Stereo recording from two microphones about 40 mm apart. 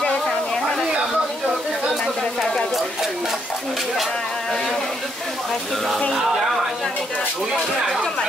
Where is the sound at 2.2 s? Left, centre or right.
Centre.